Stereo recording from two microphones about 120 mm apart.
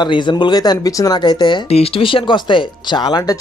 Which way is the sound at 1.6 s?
55° left (ahead or behind).